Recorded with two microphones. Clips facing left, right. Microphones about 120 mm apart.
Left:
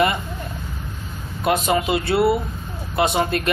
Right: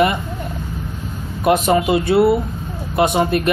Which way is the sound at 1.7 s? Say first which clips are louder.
Right 5 dB; 20° right (ahead or behind).